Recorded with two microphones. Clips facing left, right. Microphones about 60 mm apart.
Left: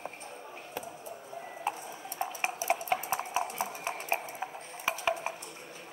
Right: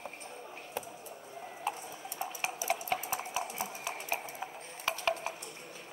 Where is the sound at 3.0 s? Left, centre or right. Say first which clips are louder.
Left 4 dB; left.